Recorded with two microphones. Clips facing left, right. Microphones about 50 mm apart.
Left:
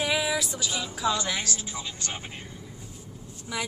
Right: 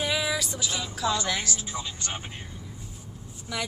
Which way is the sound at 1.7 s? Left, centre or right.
Right.